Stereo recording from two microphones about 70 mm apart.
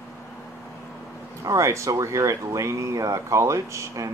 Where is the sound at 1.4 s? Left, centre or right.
Right.